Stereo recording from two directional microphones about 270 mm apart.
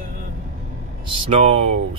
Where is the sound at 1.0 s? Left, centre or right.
Centre.